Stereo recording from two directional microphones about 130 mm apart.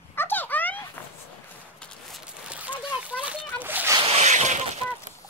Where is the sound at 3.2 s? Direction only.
15° right (ahead or behind).